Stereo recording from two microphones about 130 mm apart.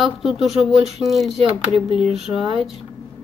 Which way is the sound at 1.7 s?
40° left (ahead or behind).